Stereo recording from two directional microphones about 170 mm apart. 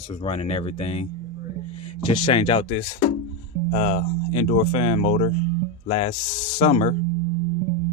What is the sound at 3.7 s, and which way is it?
Speech, 40° left (ahead or behind).